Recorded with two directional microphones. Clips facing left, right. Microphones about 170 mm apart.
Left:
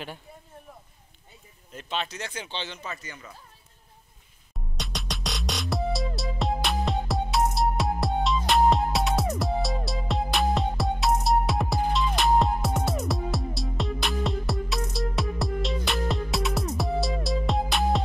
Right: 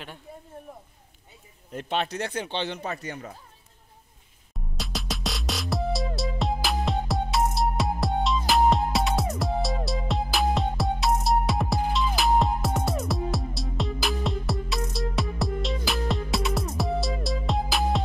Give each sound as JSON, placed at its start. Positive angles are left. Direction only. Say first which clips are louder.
{"t": 1.7, "sound": "speech", "louder": "right 4 dB", "side_deg": -55}
{"t": 4.7, "sound": "music", "louder": "right 2 dB", "side_deg": 0}